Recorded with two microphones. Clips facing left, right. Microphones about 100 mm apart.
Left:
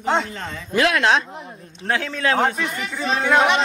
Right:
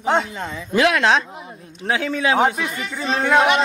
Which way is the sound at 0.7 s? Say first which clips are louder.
Right 2 dB; 20° right (ahead or behind).